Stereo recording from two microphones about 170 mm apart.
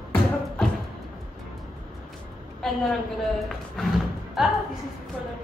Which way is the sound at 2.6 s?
Centre (ahead or behind).